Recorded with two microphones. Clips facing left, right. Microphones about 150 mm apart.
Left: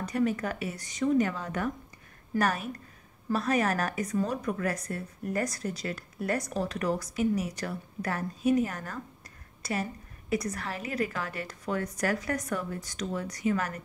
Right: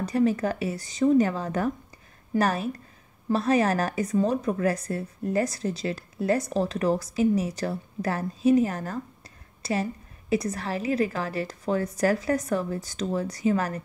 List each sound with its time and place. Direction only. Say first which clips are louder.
0.0 s a woman's voice: right 5 dB; 30° right (ahead or behind)
9.6 s a sound: right 5 dB; 30° right (ahead or behind)
10.3 s a woman's voice: right 5 dB; 30° right (ahead or behind)